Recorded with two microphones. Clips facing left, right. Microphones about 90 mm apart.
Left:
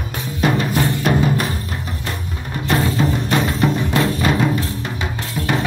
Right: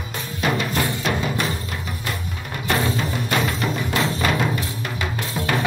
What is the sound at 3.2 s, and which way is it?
Music, centre (ahead or behind).